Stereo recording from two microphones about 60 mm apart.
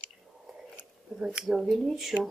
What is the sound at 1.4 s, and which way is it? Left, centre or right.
Speech, centre.